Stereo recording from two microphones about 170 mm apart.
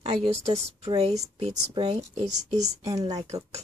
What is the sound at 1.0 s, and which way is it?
Speech, 35° right (ahead or behind).